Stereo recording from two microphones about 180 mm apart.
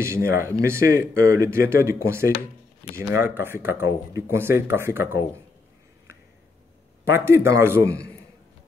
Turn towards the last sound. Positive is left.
turn(degrees=-15)  # may be behind; listen again after turning